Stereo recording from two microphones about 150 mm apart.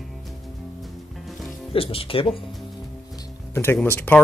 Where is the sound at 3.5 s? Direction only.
15° left (ahead or behind).